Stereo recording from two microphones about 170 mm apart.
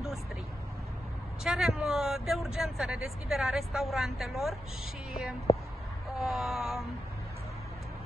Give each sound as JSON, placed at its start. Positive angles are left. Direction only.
{"t": 1.4, "sound": "speech", "side_deg": 0}
{"t": 5.5, "sound": "a sound", "side_deg": 30}
{"t": 6.1, "sound": "speech", "side_deg": 0}